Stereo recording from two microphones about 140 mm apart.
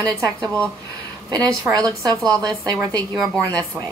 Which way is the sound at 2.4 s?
30° right (ahead or behind).